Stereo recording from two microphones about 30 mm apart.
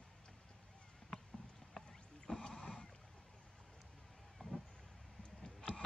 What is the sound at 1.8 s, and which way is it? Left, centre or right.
Music, centre.